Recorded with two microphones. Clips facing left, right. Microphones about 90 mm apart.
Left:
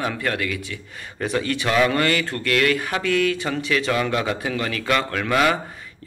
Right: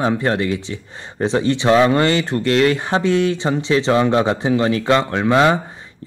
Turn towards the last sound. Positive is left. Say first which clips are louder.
# right 5 dB
turn(degrees=-25)  # may be behind; listen again after turning